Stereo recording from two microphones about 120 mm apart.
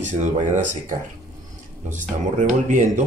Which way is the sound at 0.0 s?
90° right.